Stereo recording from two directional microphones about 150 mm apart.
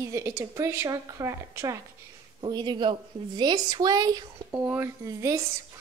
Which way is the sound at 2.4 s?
30° right (ahead or behind).